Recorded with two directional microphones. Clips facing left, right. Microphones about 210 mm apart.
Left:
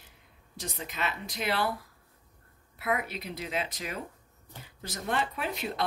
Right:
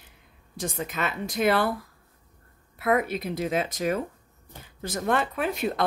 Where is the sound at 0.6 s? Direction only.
50° right (ahead or behind).